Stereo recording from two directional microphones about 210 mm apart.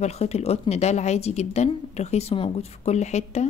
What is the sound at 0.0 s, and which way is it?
A woman's voice, 30° left (ahead or behind).